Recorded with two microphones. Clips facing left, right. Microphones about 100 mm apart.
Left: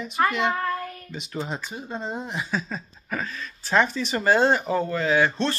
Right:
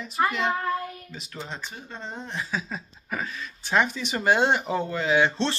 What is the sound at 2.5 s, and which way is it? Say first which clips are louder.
Speech: left 3 dB; 10° right (ahead or behind).